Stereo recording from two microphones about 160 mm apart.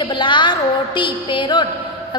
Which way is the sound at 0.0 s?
30° left (ahead or behind).